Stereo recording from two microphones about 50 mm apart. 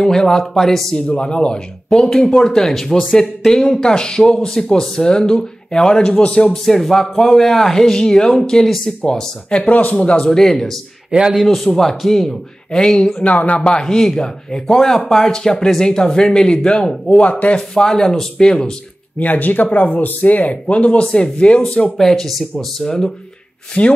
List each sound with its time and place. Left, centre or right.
0.0 s speech: centre
0.9 s speech: centre
6.6 s speech: centre
9.6 s speech: left
10.3 s speech: centre
11.1 s a man's voice: centre
11.4 s speech: centre
13.3 s speech: left
13.6 s speech: centre
17.6 s speech: centre
19.1 s speech: left
21.9 s speech: centre
23.8 s speech: left